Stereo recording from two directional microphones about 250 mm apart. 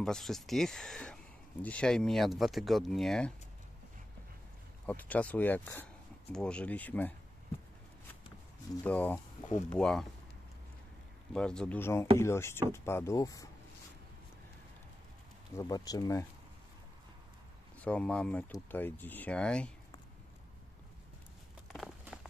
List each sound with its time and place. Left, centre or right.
0.0 s speech: centre
4.8 s speech: centre
8.8 s speech: centre
11.3 s speech: centre
15.5 s speech: centre
17.7 s speech: centre
21.7 s walk: centre